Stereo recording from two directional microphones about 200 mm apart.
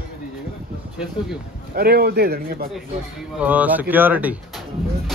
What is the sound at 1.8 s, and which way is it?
Speech, 50° right (ahead or behind).